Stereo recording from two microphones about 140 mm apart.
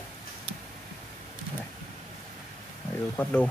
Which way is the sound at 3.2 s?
10° left (ahead or behind).